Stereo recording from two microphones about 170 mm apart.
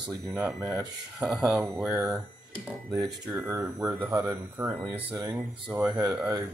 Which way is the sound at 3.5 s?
15° right (ahead or behind).